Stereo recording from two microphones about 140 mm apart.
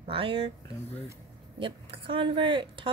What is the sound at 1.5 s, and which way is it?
Speech, 40° right (ahead or behind).